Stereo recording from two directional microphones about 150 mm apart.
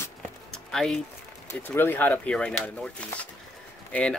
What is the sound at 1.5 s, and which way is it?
Speech, 15° left (ahead or behind).